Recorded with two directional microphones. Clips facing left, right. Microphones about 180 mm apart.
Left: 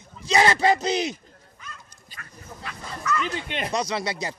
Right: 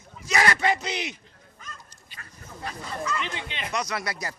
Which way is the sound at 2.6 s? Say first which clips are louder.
Right 3 dB; 30° right (ahead or behind).